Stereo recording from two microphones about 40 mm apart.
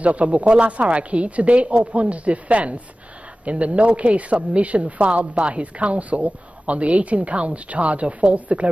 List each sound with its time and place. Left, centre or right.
0.0 s a woman's voice: right